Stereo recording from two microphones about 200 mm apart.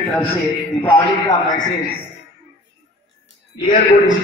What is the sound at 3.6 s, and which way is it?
Speech, 40° left (ahead or behind).